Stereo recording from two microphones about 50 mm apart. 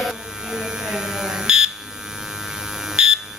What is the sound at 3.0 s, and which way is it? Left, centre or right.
Electric shaver, centre.